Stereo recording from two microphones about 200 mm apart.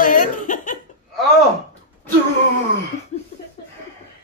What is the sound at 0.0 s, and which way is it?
Cough, 45° left (ahead or behind).